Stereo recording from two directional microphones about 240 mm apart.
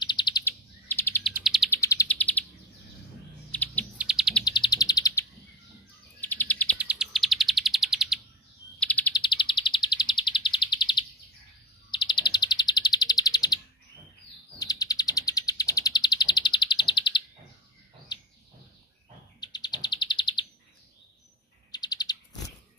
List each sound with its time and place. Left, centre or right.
0.0 s bird: centre
1.8 s chirp: centre
3.5 s owl: centre
4.0 s bird: centre
4.5 s bird: centre
6.2 s bird: centre
6.8 s chirp: centre
8.7 s bird: centre
9.1 s chirp: centre
11.9 s bird: centre
14.6 s bird: centre
19.4 s bird: centre
21.7 s bird: centre